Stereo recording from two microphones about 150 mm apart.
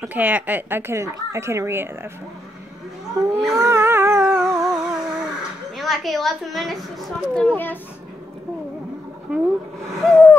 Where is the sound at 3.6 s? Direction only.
15° right (ahead or behind).